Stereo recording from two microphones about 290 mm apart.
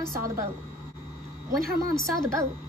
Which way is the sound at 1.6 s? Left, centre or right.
Right.